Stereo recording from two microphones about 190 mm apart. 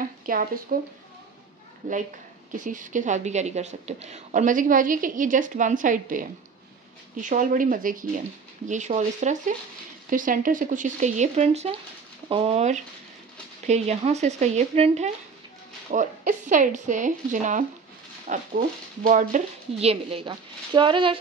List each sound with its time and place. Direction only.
0.0 s speech: 45° right (ahead or behind)
1.8 s a woman's voice: 40° right (ahead or behind); by 21.2 s 25° right (ahead or behind)